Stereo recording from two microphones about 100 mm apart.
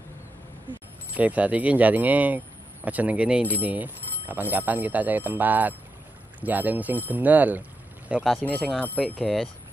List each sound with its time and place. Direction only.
1.1 s speech: 15° right (ahead or behind)
8.1 s speech: 5° right (ahead or behind)